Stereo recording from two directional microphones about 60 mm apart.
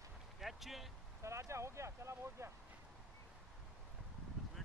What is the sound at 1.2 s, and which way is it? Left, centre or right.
Speech, right.